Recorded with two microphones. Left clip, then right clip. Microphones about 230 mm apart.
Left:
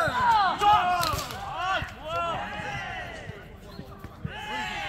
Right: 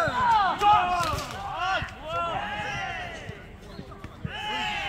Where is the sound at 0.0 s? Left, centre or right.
Left.